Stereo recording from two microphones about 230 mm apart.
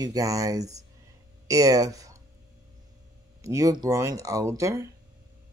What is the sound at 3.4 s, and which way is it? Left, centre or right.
Speech, centre.